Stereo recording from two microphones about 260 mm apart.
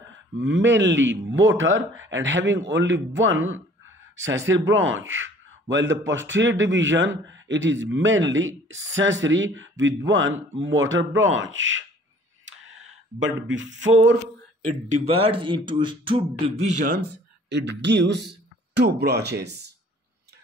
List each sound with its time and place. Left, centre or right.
0.4 s speech: right
13.5 s speech: right
14.7 s speech: right
17.5 s speech: right